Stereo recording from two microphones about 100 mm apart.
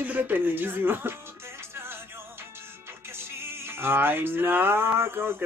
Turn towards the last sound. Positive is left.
turn(degrees=-20)  # may be behind; listen again after turning